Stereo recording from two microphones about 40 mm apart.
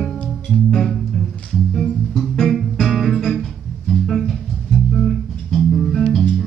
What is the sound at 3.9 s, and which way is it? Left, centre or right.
Music, centre.